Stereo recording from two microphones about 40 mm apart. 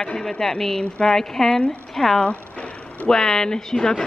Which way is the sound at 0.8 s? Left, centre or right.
Left.